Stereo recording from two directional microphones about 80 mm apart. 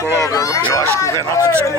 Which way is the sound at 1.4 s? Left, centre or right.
Right.